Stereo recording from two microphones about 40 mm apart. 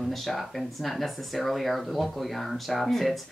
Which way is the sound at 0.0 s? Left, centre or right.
Centre.